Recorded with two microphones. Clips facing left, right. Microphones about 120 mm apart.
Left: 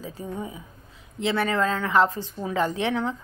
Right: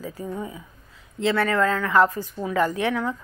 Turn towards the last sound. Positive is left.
turn(degrees=25)  # may be behind; listen again after turning